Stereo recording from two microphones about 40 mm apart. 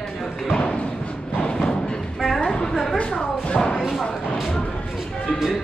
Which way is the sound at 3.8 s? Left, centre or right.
Centre.